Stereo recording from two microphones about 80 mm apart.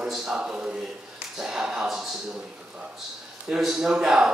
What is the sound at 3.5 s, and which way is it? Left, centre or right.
Speech, centre.